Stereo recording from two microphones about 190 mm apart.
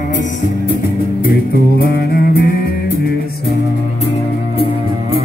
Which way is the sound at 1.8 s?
50° left (ahead or behind).